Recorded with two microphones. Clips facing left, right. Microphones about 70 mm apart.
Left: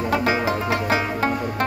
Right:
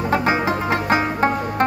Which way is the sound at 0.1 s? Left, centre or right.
Right.